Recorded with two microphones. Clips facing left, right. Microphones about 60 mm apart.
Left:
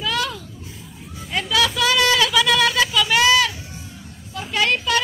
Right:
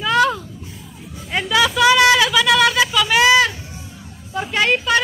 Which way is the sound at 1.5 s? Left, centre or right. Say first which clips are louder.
Right 5 dB; centre.